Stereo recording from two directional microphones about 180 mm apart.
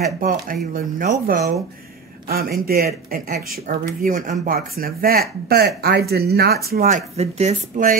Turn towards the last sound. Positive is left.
turn(degrees=-40)  # may be behind; listen again after turning